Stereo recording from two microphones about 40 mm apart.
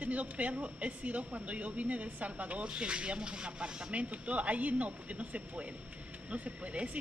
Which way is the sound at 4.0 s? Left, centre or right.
Right.